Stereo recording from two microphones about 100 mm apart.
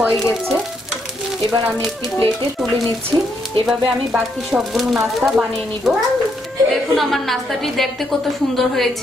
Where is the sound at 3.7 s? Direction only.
5° right (ahead or behind).